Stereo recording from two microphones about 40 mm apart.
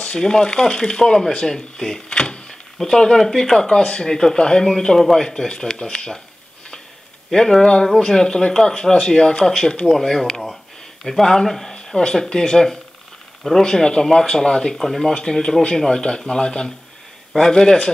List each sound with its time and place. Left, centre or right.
0.0 s speech: centre
2.0 s power windows: left
2.8 s speech: centre
7.2 s speech: centre
11.7 s speech: centre
14.8 s speech: centre